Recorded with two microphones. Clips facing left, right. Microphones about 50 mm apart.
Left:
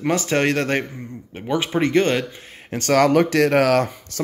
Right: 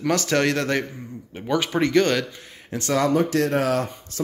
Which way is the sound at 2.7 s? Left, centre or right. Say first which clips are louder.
Left 5 dB; left.